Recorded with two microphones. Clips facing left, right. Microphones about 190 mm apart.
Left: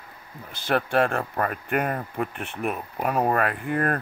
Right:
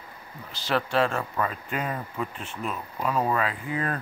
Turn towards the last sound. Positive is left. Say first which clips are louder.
# left 5 dB
turn(degrees=60)  # may be behind; listen again after turning